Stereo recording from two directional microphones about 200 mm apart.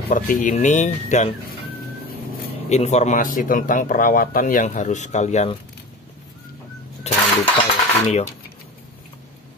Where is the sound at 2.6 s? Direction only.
35° left (ahead or behind).